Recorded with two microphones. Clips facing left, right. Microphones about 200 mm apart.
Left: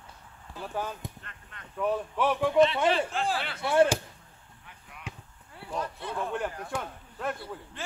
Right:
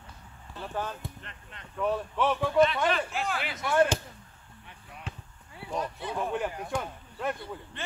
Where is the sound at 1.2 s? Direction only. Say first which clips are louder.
Right 2 dB; 20° right (ahead or behind).